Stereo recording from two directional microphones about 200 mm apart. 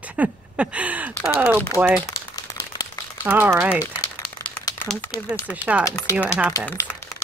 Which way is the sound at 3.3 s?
10° right (ahead or behind).